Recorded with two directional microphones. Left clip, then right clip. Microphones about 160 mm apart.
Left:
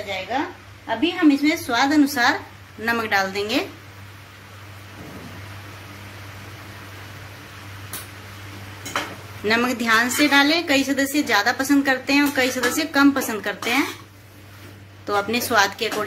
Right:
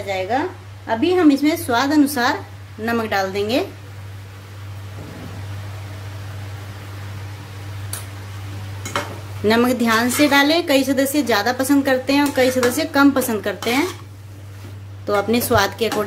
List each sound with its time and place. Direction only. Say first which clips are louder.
0.8 s a woman's voice: right 4 dB; 35° right (ahead or behind); by 3.6 s 20° right (ahead or behind)
9.5 s a woman's voice: right 2 dB; 25° right (ahead or behind)
15.0 s a woman's voice: right 4 dB; 25° right (ahead or behind)